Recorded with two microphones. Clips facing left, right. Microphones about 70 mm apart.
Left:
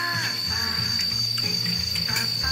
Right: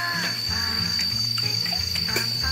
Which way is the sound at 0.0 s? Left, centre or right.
Centre.